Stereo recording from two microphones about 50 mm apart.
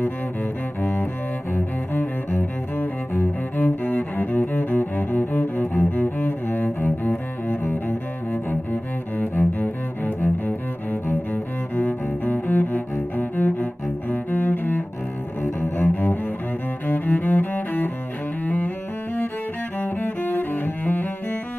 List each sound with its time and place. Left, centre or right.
1.5 s cello: left
3.5 s cello: left
9.2 s cello: left
15.9 s cello: left
19.8 s cello: left